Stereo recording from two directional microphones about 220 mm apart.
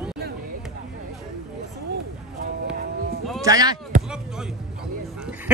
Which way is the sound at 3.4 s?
15° right (ahead or behind).